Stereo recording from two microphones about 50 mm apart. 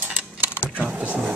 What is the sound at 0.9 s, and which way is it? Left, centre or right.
Speech, right.